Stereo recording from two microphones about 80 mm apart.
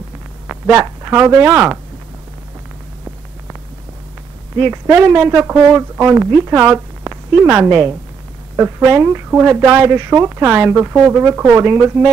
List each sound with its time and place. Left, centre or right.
0.5 s speech: right
4.6 s a woman's voice: right